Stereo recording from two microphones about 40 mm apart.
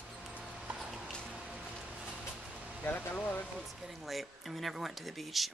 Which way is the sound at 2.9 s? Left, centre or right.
Left.